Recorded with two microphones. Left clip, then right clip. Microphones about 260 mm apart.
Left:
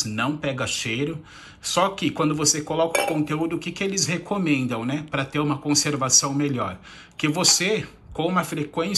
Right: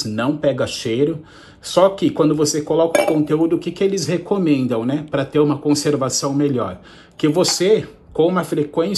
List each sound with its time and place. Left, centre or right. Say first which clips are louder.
0.1 s a man's voice: right 7 dB; left